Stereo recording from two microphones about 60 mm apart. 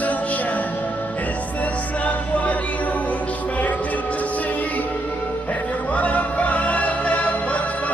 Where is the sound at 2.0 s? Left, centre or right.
Left.